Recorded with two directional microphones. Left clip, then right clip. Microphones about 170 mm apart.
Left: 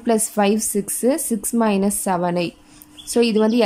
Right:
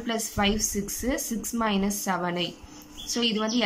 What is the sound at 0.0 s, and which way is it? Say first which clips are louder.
A woman's voice: left 8 dB; 30° left (ahead or behind).